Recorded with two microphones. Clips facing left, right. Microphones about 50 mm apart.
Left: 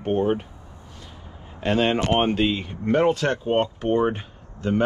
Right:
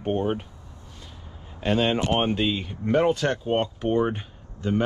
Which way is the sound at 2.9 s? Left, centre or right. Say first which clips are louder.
Left 1 dB; left.